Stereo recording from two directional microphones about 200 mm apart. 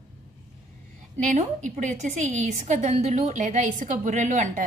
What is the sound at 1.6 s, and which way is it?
A woman's voice, 40° right (ahead or behind).